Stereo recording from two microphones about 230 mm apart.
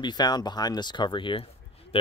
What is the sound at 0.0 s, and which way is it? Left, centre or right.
Speech, centre.